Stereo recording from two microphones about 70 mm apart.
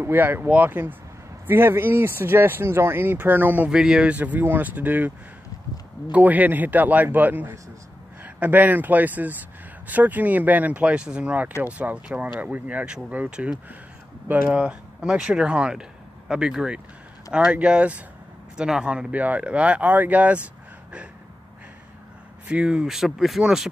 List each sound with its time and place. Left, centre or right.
0.0 s speech: right
3.7 s speech: centre
6.1 s speech: right
22.5 s speech: centre